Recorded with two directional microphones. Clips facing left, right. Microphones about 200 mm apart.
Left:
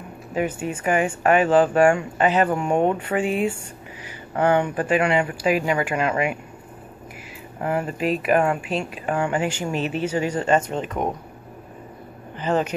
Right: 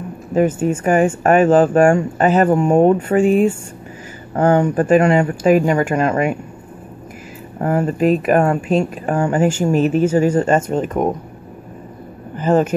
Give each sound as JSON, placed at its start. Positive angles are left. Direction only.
{"t": 0.3, "sound": "speech", "side_deg": -45}
{"t": 7.6, "sound": "speech", "side_deg": -40}
{"t": 12.4, "sound": "speech", "side_deg": -45}